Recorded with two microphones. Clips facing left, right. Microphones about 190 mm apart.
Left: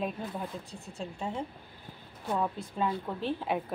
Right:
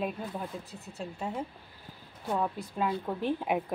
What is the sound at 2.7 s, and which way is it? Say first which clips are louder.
Speech: right 1 dB; 10° right (ahead or behind).